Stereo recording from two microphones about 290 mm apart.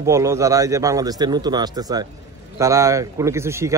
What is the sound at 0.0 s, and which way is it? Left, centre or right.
A man's voice, centre.